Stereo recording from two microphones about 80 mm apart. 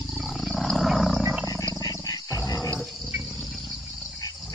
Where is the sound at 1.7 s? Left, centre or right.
Left.